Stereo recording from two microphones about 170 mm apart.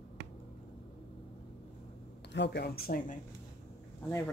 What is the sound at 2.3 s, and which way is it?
Speech, 85° left.